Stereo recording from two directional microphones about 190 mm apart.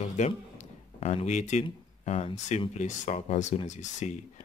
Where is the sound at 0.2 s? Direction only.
35° left (ahead or behind).